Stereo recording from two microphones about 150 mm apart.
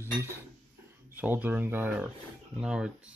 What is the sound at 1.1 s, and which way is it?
Speech, 10° right (ahead or behind).